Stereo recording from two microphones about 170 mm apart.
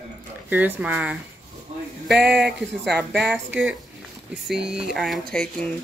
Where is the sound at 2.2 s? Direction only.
70° right (ahead or behind).